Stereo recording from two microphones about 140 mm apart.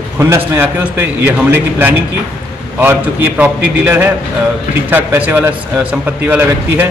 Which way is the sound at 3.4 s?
10° right (ahead or behind).